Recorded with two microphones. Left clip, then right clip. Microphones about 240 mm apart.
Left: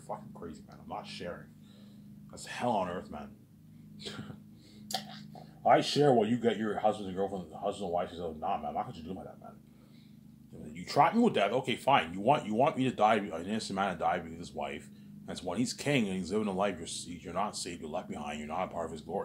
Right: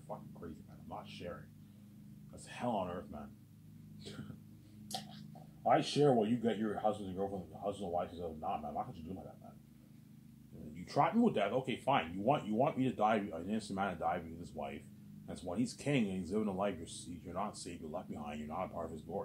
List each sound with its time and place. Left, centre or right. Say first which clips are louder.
0.8 s a sound: left 6 dB; left
2.3 s speech: left 7 dB; left
5.6 s speech: left 5 dB; left
10.7 s speech: left 7 dB; left